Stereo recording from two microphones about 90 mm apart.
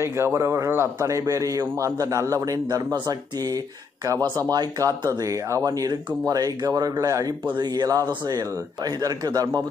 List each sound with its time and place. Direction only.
0.0 s a man's voice: 30° right (ahead or behind)
7.5 s speech: 50° right (ahead or behind)